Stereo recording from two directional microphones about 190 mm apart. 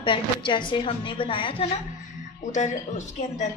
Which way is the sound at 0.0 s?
25° left (ahead or behind).